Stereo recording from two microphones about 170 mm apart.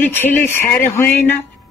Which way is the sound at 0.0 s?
10° left (ahead or behind).